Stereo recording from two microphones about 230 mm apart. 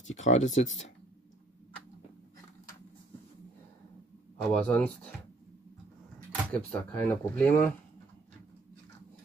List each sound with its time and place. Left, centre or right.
0.1 s speech: left
0.5 s speech: left
4.4 s speech: centre
6.5 s speech: centre